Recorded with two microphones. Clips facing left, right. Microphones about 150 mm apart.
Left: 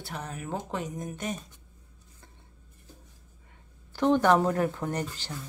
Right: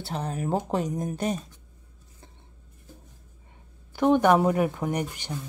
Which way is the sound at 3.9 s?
10° right (ahead or behind).